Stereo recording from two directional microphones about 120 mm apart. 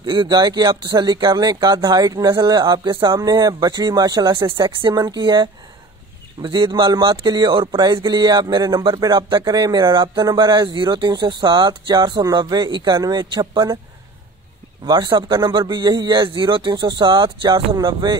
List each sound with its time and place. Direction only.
0.0 s speech: 35° right (ahead or behind)
14.9 s speech: 35° right (ahead or behind)